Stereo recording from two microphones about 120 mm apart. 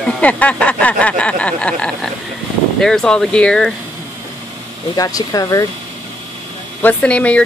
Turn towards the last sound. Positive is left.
turn(degrees=10)  # may be behind; listen again after turning